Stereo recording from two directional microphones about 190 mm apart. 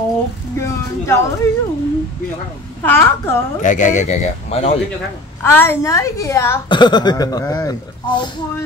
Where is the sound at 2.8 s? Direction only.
10° left (ahead or behind).